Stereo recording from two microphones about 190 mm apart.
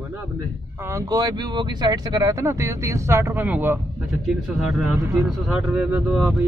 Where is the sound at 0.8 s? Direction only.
20° right (ahead or behind); by 6.4 s centre (ahead or behind).